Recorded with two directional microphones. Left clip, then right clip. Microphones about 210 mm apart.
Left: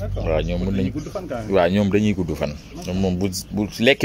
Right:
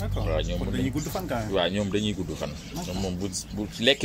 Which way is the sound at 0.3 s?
55° left (ahead or behind).